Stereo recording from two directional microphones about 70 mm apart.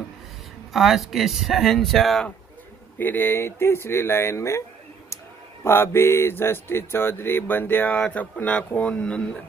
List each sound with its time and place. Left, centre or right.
0.7 s speech: centre
3.0 s speech: left